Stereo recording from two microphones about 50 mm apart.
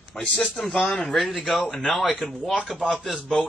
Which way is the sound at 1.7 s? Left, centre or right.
Centre.